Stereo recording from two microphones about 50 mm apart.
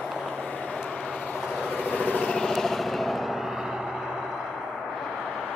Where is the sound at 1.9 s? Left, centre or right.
Left.